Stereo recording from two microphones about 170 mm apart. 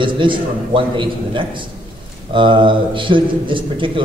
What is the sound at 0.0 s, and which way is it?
A man's voice, 30° right (ahead or behind).